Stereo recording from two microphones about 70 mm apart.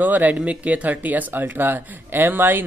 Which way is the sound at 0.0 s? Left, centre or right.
Right.